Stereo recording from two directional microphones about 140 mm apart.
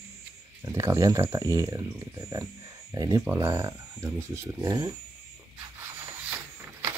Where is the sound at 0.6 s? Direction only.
20° right (ahead or behind).